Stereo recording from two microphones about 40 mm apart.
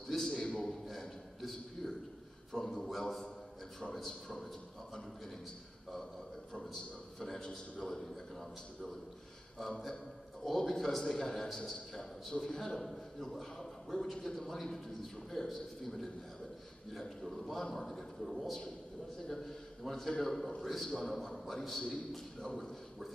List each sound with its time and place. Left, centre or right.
0.1 s a sound: centre
2.5 s a man's voice: centre
6.5 s a man's voice: centre
11.7 s a man's voice: centre
17.2 s a man's voice: centre